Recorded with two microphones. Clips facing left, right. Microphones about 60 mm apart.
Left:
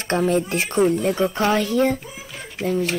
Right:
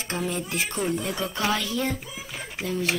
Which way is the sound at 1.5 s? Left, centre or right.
Left.